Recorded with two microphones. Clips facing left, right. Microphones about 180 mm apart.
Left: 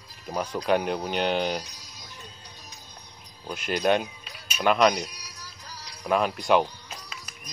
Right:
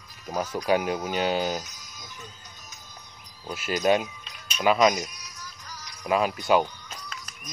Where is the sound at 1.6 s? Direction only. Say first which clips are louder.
Right 1 dB; 30° left (ahead or behind).